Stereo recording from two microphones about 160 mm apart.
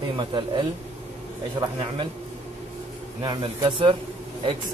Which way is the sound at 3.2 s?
30° right (ahead or behind).